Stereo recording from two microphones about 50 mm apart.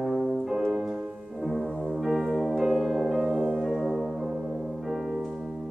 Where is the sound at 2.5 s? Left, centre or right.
Centre.